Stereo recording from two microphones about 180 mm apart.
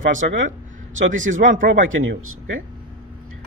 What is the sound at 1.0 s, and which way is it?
Speech, 90° right.